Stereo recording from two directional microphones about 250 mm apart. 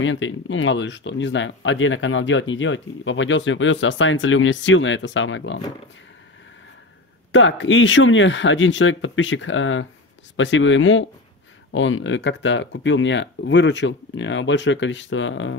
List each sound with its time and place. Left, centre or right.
0.0 s speech: left
7.3 s speech: left